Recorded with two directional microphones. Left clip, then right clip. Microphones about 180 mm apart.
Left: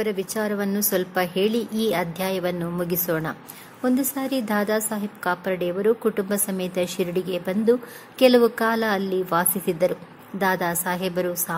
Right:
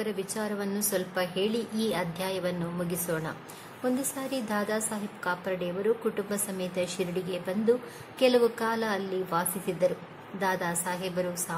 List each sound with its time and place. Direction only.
0.0 s a woman's voice: 35° left (ahead or behind)